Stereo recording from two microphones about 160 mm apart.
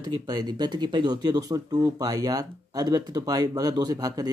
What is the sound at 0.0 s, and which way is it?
Speech, 25° right (ahead or behind).